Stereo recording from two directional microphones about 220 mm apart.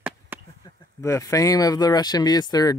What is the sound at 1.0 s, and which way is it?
Speech, 15° left (ahead or behind).